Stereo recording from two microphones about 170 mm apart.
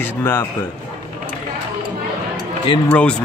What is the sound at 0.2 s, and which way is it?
Speech, 15° left (ahead or behind).